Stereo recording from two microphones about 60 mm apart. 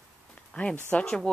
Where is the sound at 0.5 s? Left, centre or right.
Centre.